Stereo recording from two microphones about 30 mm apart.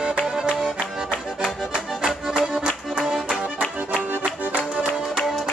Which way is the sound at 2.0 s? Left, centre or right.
Centre.